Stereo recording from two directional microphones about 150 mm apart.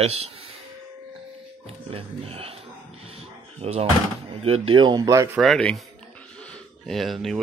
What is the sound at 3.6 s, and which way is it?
Speech, 45° right (ahead or behind).